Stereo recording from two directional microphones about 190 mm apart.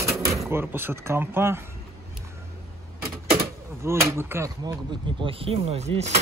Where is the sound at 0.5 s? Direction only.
10° right (ahead or behind).